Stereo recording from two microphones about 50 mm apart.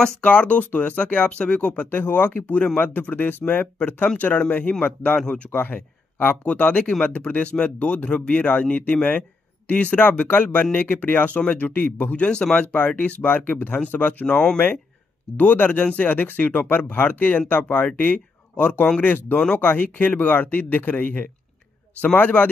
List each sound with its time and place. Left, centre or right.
0.0 s speech: left
1.1 s speech: centre
1.9 s speech: left
5.0 s speech: centre
5.5 s speech: left
6.4 s speech: left
10.2 s speech: left
12.3 s speech: left